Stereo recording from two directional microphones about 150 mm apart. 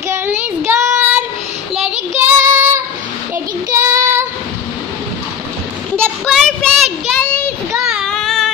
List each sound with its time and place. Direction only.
0.1 s child singing: 15° right (ahead or behind)
2.5 s a sound: 15° right (ahead or behind)
3.7 s child singing: 20° right (ahead or behind)
5.9 s child singing: centre (ahead or behind)